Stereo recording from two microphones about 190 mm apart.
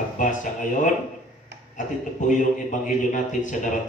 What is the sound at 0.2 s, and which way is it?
Speech, 40° left (ahead or behind).